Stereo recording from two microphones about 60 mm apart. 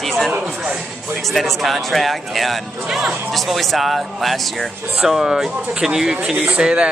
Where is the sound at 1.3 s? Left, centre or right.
Centre.